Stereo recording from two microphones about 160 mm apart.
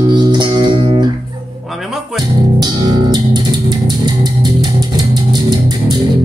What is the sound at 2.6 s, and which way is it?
Music, 25° right (ahead or behind).